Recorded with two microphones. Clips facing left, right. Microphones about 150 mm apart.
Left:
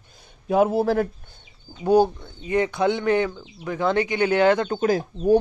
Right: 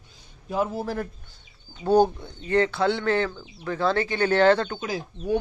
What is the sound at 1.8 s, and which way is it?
Speech, 10° left (ahead or behind).